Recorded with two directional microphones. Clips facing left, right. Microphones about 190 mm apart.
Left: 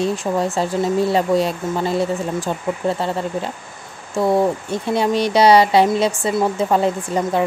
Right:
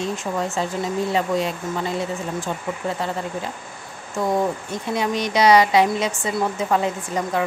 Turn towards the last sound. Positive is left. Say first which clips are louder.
# left 4 dB
turn(degrees=30)  # may be behind; listen again after turning